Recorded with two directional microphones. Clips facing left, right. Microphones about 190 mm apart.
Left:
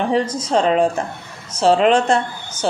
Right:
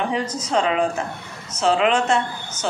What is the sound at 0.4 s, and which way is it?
Speech, 30° left (ahead or behind).